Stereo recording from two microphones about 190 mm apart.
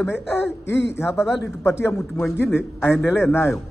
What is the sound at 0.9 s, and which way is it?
Speech, 15° left (ahead or behind).